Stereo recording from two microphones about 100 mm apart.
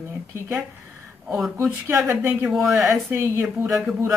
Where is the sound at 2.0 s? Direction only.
20° right (ahead or behind).